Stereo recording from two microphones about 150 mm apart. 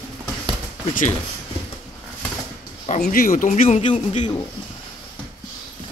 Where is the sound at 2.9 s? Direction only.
60° left (ahead or behind).